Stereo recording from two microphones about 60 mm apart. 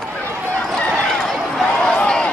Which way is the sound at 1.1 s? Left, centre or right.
Centre.